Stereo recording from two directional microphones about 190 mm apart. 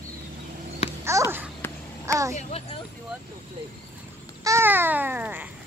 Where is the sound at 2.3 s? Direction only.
30° left (ahead or behind).